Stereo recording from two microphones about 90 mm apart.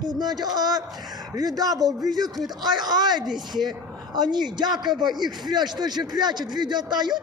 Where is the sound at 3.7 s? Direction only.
55° right (ahead or behind).